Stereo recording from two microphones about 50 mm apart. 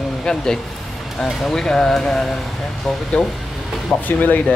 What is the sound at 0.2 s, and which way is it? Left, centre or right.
Speech, centre.